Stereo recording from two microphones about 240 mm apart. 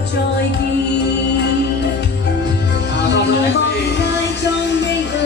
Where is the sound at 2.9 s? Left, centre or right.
Left.